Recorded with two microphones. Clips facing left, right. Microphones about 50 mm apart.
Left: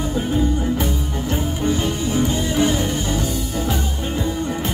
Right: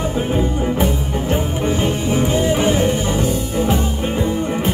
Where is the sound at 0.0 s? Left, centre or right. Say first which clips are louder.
Right 2 dB; right.